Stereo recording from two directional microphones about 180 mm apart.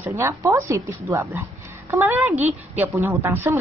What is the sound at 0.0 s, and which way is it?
A woman's voice, 15° right (ahead or behind).